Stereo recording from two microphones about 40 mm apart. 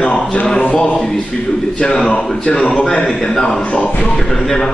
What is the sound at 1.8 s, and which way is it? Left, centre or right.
A man's voice, left.